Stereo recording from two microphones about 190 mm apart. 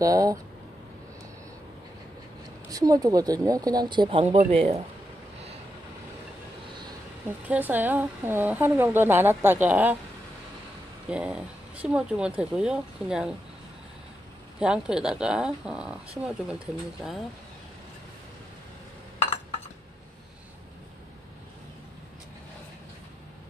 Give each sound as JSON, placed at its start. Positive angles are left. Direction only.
{"t": 0.0, "sound": "speech", "side_deg": -20}
{"t": 2.7, "sound": "speech", "side_deg": -20}
{"t": 7.2, "sound": "speech", "side_deg": -10}
{"t": 11.1, "sound": "speech", "side_deg": -5}
{"t": 14.6, "sound": "speech", "side_deg": -5}